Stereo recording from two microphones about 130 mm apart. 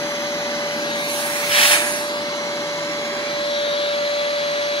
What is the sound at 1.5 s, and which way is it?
Vacuum cleaner, 40° left (ahead or behind).